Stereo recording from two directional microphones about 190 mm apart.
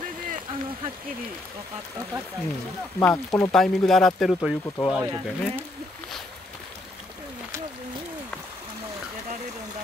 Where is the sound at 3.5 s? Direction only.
Centre (ahead or behind).